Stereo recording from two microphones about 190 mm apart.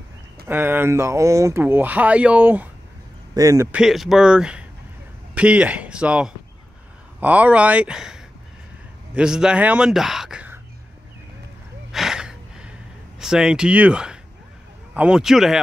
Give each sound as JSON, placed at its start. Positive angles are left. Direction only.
{"t": 0.5, "sound": "speech", "side_deg": -10}
{"t": 3.7, "sound": "a man's voice", "side_deg": 0}
{"t": 11.9, "sound": "gasp", "side_deg": 0}
{"t": 13.2, "sound": "speech", "side_deg": -5}